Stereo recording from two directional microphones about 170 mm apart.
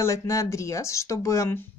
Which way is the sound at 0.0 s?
15° left (ahead or behind).